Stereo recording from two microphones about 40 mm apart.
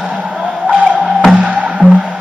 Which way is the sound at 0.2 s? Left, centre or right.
Right.